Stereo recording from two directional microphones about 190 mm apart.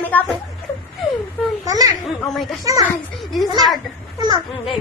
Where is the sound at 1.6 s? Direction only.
20° right (ahead or behind).